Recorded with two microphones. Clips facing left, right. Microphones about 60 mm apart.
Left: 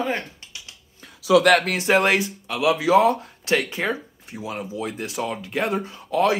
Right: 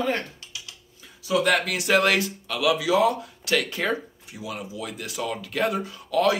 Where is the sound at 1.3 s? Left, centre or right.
Left.